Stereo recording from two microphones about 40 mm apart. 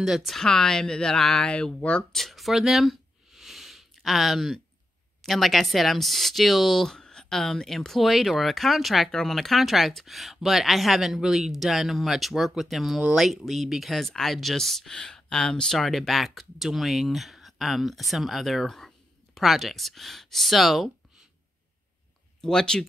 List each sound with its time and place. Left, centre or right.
0.0 s speech: centre
0.4 s speech: centre
1.5 s speech: left
2.1 s a sound: centre
5.2 s speech: centre
15.7 s speech: centre
22.4 s speech: centre